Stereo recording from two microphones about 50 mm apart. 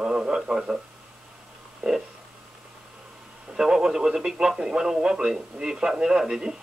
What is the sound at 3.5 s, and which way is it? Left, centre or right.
Radio, centre.